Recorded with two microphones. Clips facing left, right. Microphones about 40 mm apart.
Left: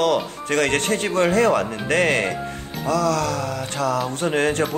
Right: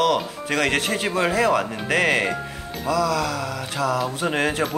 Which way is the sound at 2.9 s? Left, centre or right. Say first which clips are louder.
Left 1 dB; centre.